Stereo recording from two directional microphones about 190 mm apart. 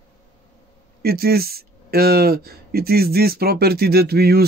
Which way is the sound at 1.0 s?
55° right (ahead or behind).